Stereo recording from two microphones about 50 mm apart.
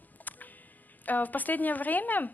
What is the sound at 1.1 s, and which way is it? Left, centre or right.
Speech, left.